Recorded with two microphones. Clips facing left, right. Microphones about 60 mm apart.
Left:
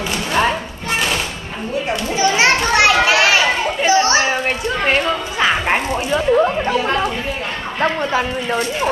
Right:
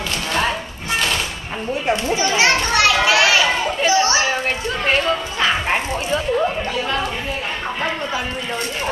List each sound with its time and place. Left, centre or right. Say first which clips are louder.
0.3 s music: left 4 dB; centre
2.1 s children playing: left 5 dB; left
3.4 s chatter: left 2 dB; centre
3.9 s children playing: left 4 dB; left
4.3 s a sound: left 2 dB; centre
7.8 s speech: left 8 dB; left